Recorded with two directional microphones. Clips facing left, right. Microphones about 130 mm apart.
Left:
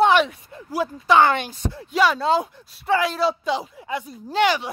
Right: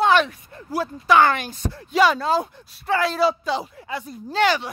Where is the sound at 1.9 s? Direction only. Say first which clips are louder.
Right 2 dB; centre (ahead or behind).